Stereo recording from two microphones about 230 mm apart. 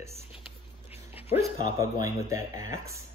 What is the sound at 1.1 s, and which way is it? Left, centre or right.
Dog, centre.